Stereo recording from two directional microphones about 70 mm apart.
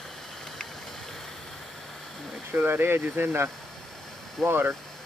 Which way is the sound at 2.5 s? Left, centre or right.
Right.